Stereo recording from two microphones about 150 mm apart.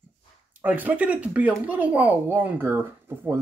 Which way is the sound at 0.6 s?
10° right (ahead or behind).